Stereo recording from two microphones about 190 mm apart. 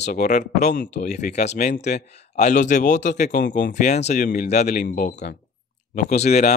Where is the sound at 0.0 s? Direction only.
40° left (ahead or behind).